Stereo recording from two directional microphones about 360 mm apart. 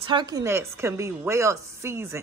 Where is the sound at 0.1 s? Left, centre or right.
Centre.